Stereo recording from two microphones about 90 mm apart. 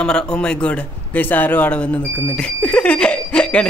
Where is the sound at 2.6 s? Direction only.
10° left (ahead or behind).